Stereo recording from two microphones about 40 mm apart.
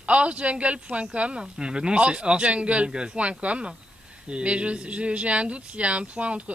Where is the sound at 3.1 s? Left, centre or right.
Right.